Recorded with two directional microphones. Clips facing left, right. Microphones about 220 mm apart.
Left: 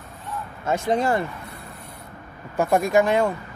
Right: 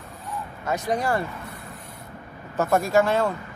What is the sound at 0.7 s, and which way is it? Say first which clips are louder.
Speech: left 3 dB; 25° left (ahead or behind).